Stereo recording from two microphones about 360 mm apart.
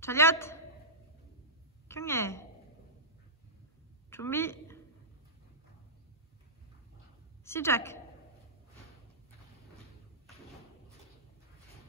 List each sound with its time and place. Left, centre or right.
0.0 s a woman's voice: centre
1.9 s a woman's voice: centre
4.1 s a woman's voice: centre
7.4 s a woman's voice: centre